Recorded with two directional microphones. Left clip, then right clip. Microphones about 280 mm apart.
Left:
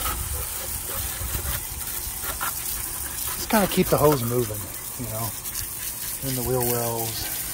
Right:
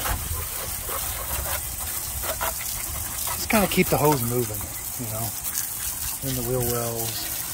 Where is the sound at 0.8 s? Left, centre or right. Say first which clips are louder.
Right 2 dB; centre.